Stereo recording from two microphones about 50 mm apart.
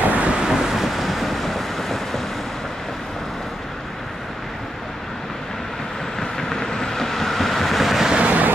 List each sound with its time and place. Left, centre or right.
0.0 s vehicle: right
0.4 s vehicle: centre
6.1 s vehicle: centre
8.3 s vehicle: right